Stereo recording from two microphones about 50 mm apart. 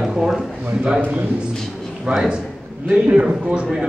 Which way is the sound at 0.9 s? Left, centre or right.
Right.